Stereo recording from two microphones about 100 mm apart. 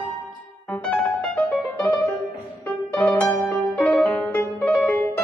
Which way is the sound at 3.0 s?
20° left (ahead or behind).